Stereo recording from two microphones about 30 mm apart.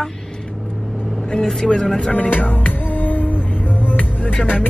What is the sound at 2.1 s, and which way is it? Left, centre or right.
Music, left.